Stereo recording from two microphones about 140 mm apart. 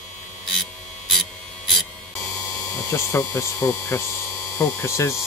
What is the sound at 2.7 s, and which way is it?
Speech, 20° left (ahead or behind).